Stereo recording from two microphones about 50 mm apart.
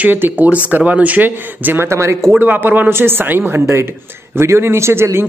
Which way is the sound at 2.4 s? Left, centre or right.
Right.